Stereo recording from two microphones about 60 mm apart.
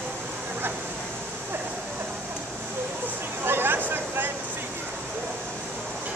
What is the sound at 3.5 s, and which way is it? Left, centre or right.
Vehicle, right.